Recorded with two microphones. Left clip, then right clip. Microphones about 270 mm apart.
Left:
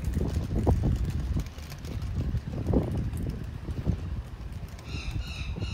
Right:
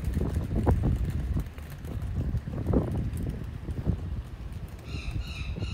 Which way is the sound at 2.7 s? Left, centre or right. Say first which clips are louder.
Even; left.